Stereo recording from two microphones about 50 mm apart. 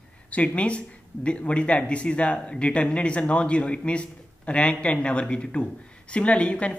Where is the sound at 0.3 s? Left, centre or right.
Left.